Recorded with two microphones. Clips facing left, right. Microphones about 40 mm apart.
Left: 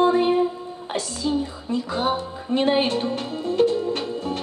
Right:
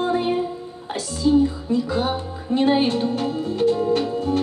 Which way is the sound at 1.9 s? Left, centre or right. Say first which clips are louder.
Even; left.